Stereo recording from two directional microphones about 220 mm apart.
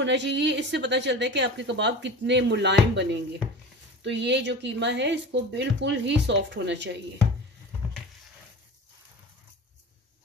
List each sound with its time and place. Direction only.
0.0 s a woman's voice: 55° right (ahead or behind)